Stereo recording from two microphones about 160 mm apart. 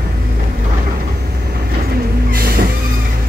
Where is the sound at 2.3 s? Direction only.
65° right (ahead or behind).